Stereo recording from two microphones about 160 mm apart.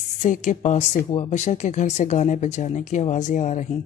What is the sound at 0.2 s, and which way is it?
Speech, 50° left (ahead or behind).